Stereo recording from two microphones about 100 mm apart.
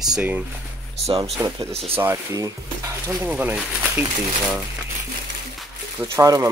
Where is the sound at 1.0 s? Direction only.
90° right.